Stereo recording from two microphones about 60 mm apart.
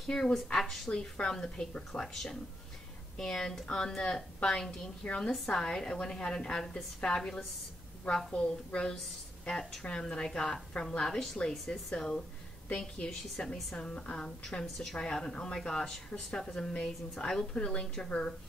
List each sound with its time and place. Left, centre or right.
0.0 s a woman's voice: centre
11.5 s a woman's voice: centre
13.6 s speech: centre
13.8 s a woman's voice: left